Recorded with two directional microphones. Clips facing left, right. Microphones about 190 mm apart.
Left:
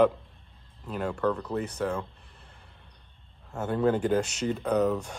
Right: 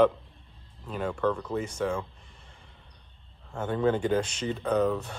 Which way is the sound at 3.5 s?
5° left (ahead or behind).